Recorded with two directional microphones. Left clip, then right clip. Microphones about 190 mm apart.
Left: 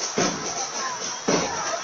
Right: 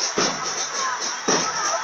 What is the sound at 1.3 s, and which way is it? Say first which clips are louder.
Music: right 1 dB; 55° right (ahead or behind).